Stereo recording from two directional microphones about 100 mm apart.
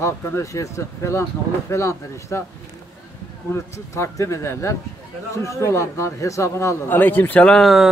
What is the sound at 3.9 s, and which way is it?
Speech, 30° left (ahead or behind).